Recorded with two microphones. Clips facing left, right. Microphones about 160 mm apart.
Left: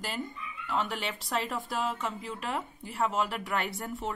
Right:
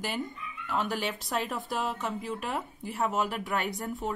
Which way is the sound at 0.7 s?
Centre (ahead or behind).